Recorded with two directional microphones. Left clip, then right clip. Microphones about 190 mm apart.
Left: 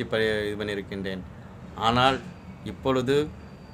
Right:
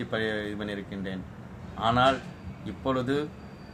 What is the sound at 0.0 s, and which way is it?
A man's voice, 55° left (ahead or behind).